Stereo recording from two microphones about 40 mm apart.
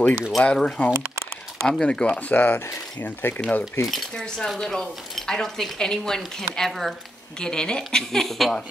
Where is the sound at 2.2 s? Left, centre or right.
Left.